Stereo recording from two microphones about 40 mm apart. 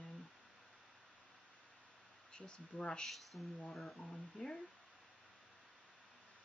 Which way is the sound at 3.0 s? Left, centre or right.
Centre.